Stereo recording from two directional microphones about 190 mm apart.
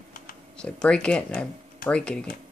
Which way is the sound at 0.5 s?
5° left (ahead or behind).